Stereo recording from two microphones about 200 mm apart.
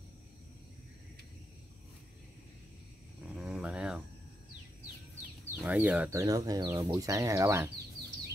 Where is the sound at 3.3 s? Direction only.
5° right (ahead or behind).